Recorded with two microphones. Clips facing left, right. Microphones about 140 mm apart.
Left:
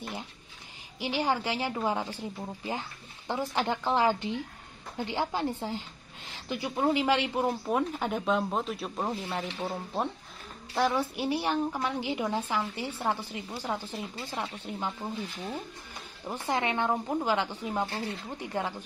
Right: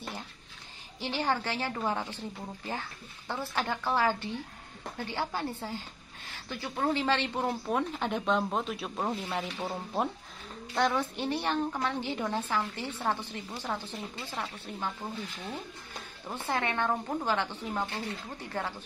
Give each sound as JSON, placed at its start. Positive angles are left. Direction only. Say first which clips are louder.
{"t": 0.9, "sound": "a woman's voice", "louder": "left 2 dB", "side_deg": 15}
{"t": 17.8, "sound": "speech", "louder": "left 2 dB", "side_deg": 30}
{"t": 18.4, "sound": "a woman's voice", "louder": "left 4 dB", "side_deg": 15}